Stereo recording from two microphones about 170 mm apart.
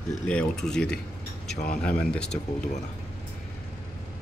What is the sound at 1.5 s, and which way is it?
Speech, 60° left (ahead or behind).